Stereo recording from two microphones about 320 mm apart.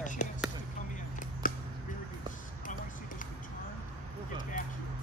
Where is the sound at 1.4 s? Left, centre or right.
Left.